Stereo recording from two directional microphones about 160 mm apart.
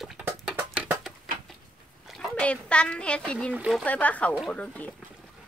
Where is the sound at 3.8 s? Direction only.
10° left (ahead or behind).